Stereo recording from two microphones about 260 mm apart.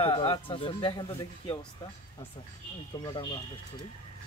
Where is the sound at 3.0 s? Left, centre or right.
Centre.